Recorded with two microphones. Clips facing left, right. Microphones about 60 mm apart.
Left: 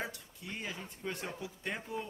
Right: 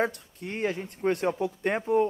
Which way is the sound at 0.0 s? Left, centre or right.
Right.